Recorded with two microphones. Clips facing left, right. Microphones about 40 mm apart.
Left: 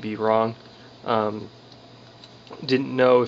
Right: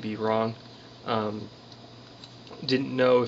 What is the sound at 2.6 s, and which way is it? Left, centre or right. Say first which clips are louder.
Speech: left 4 dB; centre.